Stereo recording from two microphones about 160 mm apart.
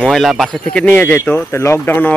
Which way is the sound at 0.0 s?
Centre (ahead or behind).